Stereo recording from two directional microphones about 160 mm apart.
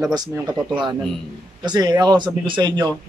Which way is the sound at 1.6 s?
25° right (ahead or behind).